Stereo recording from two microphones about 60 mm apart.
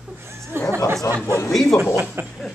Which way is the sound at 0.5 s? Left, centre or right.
Right.